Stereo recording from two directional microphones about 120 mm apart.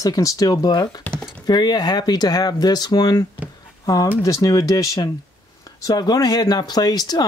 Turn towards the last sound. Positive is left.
turn(degrees=35)  # may be behind; listen again after turning